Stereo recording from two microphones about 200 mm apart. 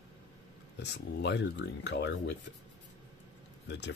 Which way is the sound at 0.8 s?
60° left (ahead or behind).